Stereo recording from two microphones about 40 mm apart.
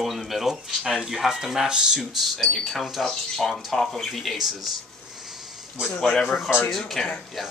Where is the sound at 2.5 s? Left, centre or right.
Centre.